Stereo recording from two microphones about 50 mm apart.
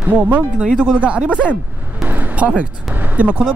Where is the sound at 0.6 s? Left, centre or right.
Centre.